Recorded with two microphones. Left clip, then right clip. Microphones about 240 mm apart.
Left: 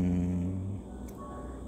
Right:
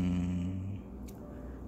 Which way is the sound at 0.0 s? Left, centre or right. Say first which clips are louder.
Left 3 dB; centre.